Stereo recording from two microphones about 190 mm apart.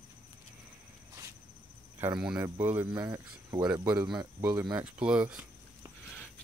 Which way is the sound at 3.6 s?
5° right (ahead or behind).